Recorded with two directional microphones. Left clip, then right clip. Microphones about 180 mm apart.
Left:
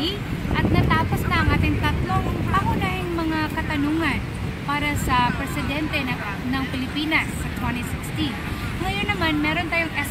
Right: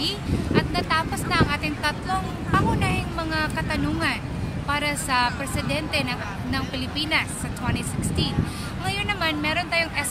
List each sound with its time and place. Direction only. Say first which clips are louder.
0.6 s vehicle: left 2 dB; 25° right (ahead or behind)
4.6 s a woman's voice: left 1 dB; 25° right (ahead or behind)
8.8 s a woman's voice: left 1 dB; 25° right (ahead or behind)